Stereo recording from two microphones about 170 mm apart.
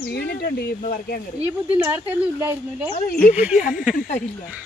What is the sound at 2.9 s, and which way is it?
Speech, 55° left (ahead or behind).